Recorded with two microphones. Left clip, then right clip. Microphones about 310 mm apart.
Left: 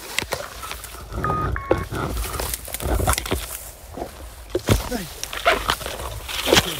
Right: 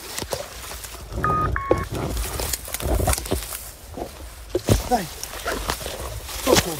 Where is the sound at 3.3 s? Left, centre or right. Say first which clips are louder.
Left 1 dB; centre.